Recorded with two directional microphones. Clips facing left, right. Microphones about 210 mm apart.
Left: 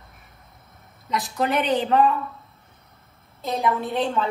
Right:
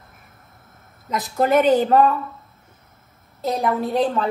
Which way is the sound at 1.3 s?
45° right (ahead or behind).